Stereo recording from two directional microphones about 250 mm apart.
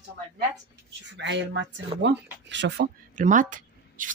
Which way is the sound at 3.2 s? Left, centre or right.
Right.